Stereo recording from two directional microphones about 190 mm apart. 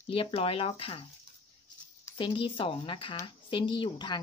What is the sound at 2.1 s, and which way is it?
Speech, 25° left (ahead or behind).